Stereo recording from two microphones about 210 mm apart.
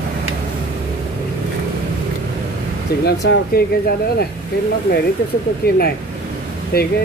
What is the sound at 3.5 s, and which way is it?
Speech, 45° left (ahead or behind).